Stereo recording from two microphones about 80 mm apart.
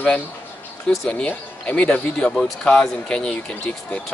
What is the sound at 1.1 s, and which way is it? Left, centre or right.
A man's voice, centre.